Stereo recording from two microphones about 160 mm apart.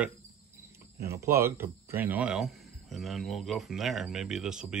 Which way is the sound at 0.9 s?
15° right (ahead or behind).